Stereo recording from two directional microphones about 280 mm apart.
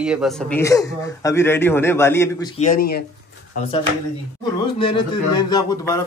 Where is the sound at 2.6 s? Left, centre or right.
Left.